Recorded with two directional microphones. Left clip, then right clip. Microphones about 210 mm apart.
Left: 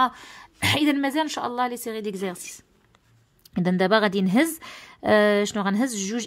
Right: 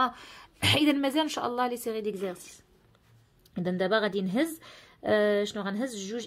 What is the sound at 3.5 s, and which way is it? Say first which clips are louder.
A woman's voice: left 6 dB; 55° left (ahead or behind).